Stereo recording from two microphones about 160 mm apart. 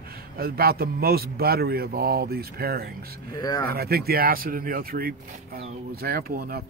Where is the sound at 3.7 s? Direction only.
70° right (ahead or behind).